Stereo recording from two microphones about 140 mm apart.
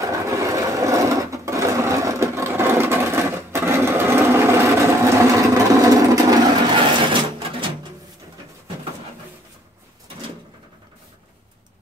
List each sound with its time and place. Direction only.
0.0 s sewing machine: 20° right (ahead or behind)
6.7 s sewing machine: 35° right (ahead or behind)